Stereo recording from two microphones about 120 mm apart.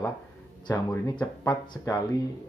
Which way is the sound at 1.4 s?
40° left (ahead or behind).